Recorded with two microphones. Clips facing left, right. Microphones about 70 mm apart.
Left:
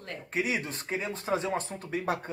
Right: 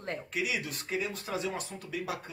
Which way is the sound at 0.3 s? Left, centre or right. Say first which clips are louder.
Left 5 dB; left.